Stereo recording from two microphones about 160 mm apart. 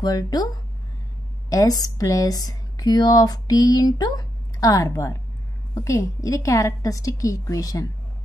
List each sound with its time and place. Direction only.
0.0 s speech: 25° left (ahead or behind)
1.5 s speech: 20° left (ahead or behind)